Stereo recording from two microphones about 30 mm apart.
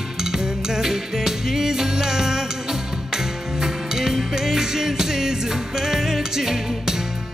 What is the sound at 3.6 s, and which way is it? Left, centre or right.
Music, centre.